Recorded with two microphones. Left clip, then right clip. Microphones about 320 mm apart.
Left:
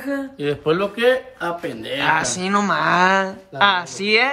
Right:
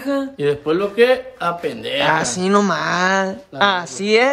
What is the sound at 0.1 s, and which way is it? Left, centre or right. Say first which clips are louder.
Speech: right 5 dB; centre.